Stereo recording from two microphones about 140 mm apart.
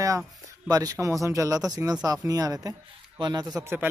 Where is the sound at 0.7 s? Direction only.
25° right (ahead or behind).